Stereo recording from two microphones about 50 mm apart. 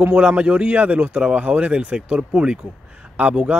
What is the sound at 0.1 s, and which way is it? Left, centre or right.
A man's voice, right.